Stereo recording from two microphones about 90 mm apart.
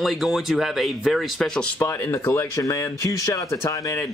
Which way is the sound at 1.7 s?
30° left (ahead or behind).